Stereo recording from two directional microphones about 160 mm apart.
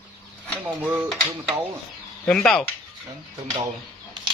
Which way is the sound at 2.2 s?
5° left (ahead or behind).